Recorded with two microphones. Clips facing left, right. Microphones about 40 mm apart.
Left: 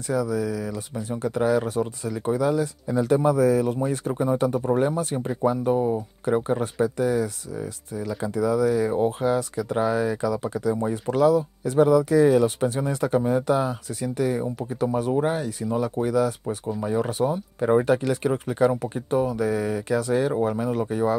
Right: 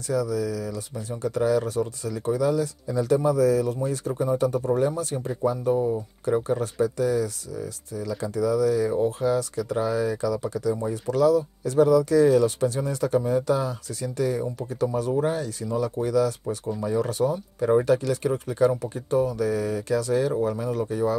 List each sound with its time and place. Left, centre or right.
0.1 s speech: left